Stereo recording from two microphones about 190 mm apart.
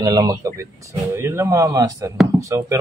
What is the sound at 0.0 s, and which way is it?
Speech, 20° right (ahead or behind).